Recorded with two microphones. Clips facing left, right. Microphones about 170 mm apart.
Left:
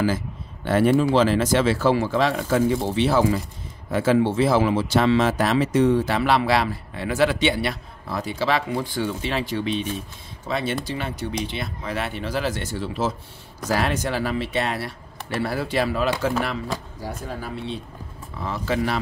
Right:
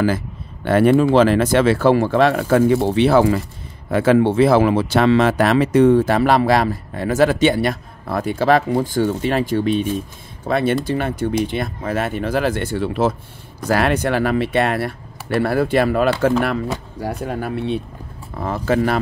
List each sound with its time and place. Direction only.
0.7 s speech: 60° right (ahead or behind)
17.0 s speech: 65° right (ahead or behind)
18.3 s speech: 50° right (ahead or behind)